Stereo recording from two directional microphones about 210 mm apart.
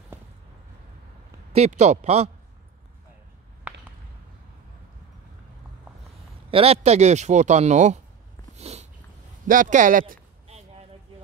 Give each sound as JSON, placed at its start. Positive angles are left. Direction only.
{"t": 1.5, "sound": "a man's voice", "side_deg": -30}
{"t": 6.5, "sound": "a man's voice", "side_deg": -30}
{"t": 8.5, "sound": "dog", "side_deg": -30}
{"t": 9.5, "sound": "speech", "side_deg": -40}